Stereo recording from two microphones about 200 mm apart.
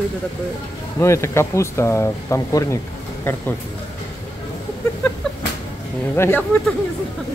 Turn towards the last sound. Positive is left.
turn(degrees=10)  # may be behind; listen again after turning